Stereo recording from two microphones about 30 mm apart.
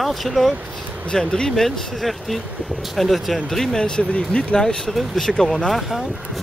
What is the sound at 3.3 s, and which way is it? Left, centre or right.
Speech, centre.